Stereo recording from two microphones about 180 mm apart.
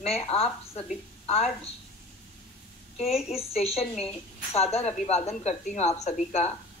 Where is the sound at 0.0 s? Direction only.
35° left (ahead or behind).